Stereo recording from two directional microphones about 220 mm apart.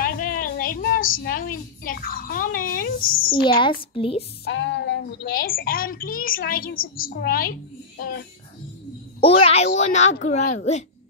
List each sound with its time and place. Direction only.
0.0 s speech: 40° left (ahead or behind)
3.9 s speech: 25° left (ahead or behind)
4.5 s a child's voice: 55° left (ahead or behind)
9.2 s a child's voice: 25° left (ahead or behind)